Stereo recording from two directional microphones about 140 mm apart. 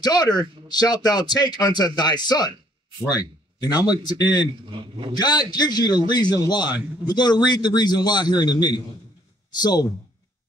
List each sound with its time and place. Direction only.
0.0 s a man's voice: 30° left (ahead or behind)
4.5 s a man's voice: 35° right (ahead or behind)
5.1 s a man's voice: 30° left (ahead or behind)